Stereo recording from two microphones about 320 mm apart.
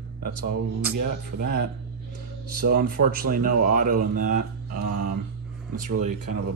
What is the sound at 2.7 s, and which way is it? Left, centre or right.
Speech, right.